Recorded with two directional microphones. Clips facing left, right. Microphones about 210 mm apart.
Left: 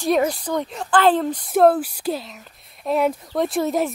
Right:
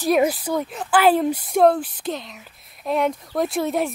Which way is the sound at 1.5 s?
5° left (ahead or behind).